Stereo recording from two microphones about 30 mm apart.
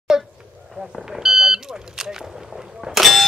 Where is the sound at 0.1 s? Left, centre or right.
Centre.